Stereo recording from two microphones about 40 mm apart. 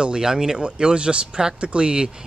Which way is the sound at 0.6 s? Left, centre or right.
Right.